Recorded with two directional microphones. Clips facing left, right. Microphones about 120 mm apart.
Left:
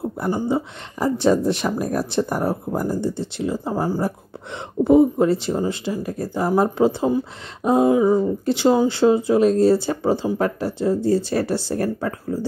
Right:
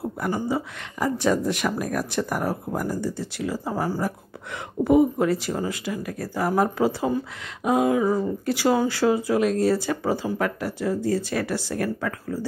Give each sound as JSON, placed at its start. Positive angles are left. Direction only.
{"t": 0.0, "sound": "speech", "side_deg": 25}